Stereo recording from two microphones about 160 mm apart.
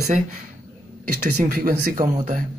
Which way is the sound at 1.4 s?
60° right (ahead or behind).